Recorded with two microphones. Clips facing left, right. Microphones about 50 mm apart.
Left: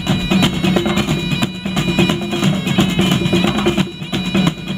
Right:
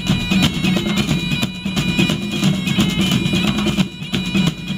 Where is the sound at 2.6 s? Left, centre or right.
Left.